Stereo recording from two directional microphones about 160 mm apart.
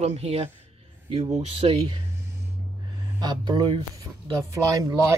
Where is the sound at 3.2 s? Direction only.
25° right (ahead or behind).